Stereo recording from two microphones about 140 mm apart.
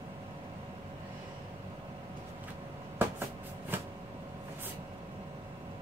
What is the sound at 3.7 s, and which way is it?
Vehicle, 15° right (ahead or behind).